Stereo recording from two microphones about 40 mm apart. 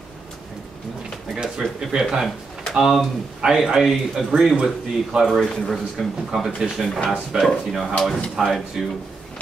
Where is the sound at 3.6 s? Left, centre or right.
Centre.